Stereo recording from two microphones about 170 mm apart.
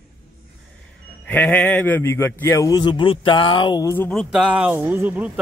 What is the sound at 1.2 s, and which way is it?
A man's voice, 10° left (ahead or behind).